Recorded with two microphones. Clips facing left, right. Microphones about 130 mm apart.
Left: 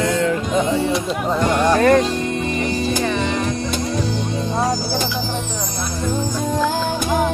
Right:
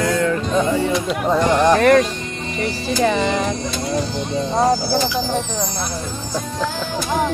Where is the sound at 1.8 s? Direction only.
25° left (ahead or behind).